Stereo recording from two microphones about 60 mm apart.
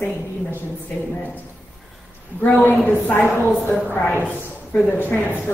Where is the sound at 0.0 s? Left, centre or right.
Left.